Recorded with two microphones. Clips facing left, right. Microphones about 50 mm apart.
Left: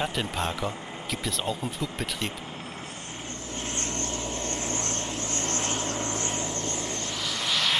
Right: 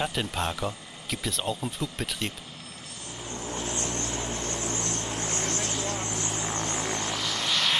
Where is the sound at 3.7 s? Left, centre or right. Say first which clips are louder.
Left 2 dB; left.